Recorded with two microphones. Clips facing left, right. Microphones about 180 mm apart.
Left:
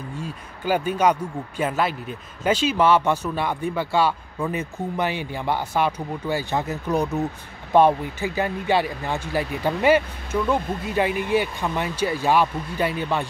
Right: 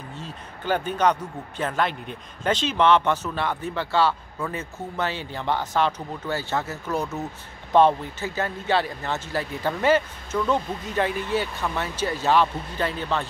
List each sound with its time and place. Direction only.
0.2 s speech: 10° left (ahead or behind)